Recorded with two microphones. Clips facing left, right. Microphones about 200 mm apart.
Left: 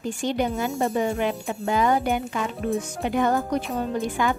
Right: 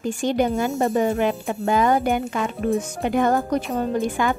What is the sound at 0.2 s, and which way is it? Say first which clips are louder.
Speech: right 4 dB; 50° right (ahead or behind).